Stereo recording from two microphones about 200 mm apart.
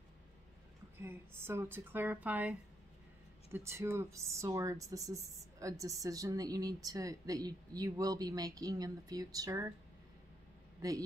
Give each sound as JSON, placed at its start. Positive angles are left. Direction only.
{"t": 1.0, "sound": "speech", "side_deg": -10}
{"t": 3.5, "sound": "speech", "side_deg": -15}